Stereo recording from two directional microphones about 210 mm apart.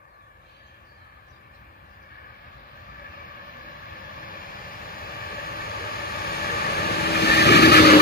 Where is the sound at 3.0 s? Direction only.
45° left (ahead or behind).